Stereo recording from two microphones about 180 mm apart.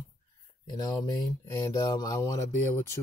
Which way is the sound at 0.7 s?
20° left (ahead or behind).